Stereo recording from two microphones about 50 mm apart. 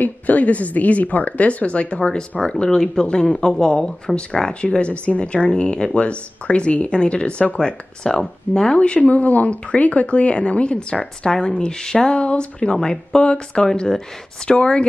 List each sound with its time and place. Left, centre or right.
0.0 s speech: left; by 8.7 s centre
8.7 s speech: left
14.5 s speech: left